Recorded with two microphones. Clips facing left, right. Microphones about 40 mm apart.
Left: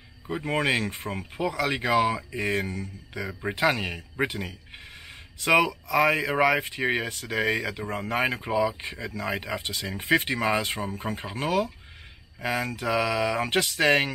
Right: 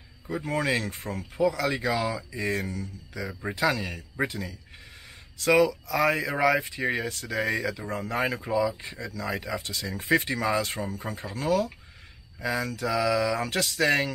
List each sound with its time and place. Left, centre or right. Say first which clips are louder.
0.3 s speech: left 2 dB; left